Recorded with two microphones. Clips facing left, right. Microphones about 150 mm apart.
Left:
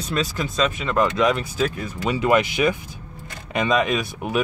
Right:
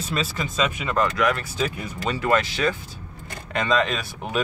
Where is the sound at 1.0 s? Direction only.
20° left (ahead or behind).